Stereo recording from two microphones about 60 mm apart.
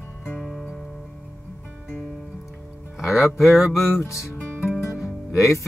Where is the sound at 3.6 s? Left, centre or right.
Left.